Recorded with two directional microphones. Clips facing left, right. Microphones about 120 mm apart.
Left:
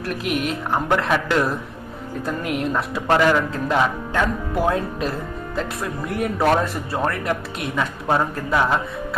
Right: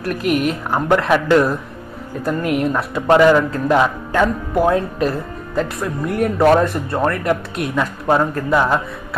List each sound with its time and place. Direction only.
0.0 s speech: centre (ahead or behind)